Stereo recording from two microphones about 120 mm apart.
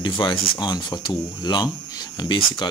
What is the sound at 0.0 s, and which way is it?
Speech, 40° left (ahead or behind).